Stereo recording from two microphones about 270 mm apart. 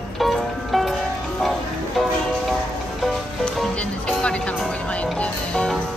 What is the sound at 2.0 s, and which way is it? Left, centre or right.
Music, centre.